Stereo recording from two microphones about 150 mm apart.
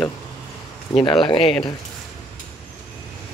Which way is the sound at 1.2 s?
30° left (ahead or behind).